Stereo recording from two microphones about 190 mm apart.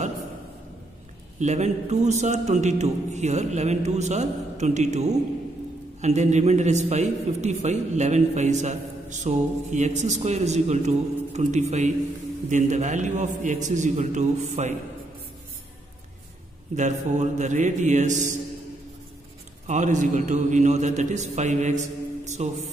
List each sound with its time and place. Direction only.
1.4 s a man's voice: 35° right (ahead or behind)
16.7 s a man's voice: 40° right (ahead or behind)
19.6 s a man's voice: 40° right (ahead or behind)
22.2 s mantra: 35° right (ahead or behind)